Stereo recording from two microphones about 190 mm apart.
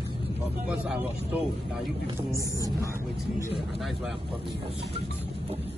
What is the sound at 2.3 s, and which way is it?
Speech, 15° right (ahead or behind).